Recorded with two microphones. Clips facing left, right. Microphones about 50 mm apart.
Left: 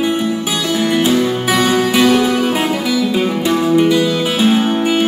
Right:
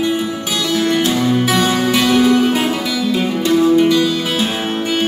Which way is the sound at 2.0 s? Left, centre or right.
Left.